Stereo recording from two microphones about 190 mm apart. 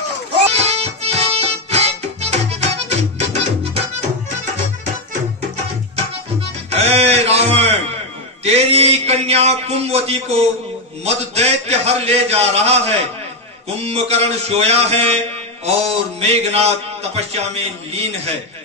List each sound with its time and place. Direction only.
0.5 s music: 35° right (ahead or behind)
6.7 s a sound: 35° right (ahead or behind)
8.5 s a man's voice: 30° right (ahead or behind)